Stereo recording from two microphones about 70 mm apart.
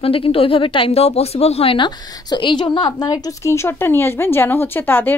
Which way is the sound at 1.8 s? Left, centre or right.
Left.